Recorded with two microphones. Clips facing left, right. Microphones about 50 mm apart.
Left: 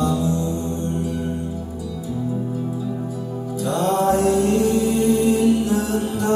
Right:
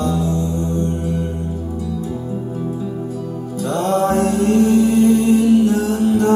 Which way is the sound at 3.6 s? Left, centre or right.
Right.